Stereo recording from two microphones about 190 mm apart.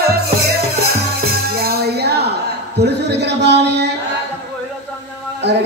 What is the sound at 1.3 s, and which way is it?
Music, 55° right (ahead or behind).